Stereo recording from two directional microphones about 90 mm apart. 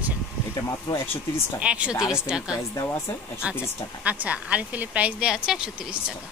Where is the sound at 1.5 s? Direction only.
10° right (ahead or behind).